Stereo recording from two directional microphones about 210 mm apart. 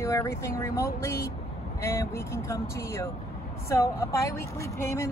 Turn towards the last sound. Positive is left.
turn(degrees=15)  # may be behind; listen again after turning